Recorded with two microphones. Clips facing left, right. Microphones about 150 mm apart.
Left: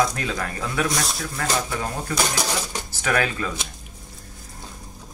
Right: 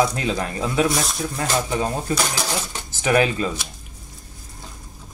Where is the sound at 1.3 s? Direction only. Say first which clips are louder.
Right 3 dB; 20° right (ahead or behind).